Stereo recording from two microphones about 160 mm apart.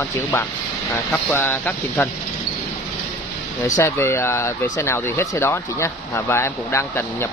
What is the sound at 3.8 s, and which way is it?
Speech, 20° left (ahead or behind).